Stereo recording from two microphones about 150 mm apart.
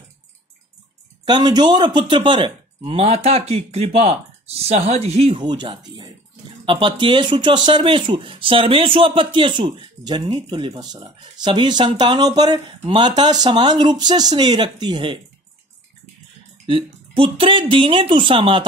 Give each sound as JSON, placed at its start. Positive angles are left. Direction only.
{"t": 1.2, "sound": "speech", "side_deg": -30}
{"t": 5.4, "sound": "speech", "side_deg": -30}
{"t": 16.6, "sound": "speech", "side_deg": -35}